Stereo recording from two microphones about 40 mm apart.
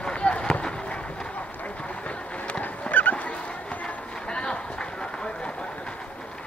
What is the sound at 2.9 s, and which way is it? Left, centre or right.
Fowl, left.